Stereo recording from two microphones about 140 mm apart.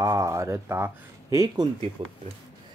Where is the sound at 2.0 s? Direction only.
40° right (ahead or behind).